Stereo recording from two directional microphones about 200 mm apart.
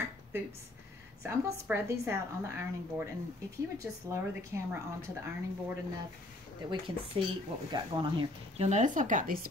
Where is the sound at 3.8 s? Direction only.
15° right (ahead or behind).